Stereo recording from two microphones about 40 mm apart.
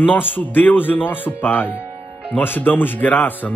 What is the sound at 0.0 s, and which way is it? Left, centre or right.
Speech, left.